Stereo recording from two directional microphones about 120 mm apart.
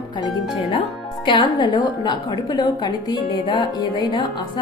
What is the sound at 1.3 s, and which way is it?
A woman's voice, 40° left (ahead or behind).